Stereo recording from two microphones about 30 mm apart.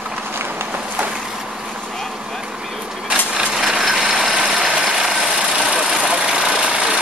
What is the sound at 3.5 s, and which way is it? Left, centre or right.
Vehicle, centre.